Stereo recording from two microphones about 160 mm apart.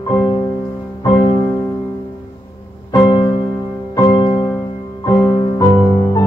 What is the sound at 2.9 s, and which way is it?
Music, 25° left (ahead or behind).